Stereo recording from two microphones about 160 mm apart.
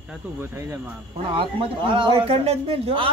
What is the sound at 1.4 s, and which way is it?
A man's voice, 30° right (ahead or behind).